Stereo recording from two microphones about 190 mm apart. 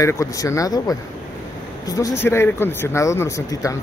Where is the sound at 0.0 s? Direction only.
15° left (ahead or behind).